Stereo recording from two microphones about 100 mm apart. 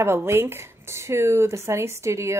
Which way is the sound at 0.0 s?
25° right (ahead or behind).